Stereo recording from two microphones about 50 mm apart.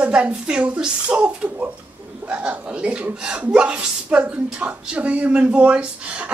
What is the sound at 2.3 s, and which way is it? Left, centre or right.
Speech, right.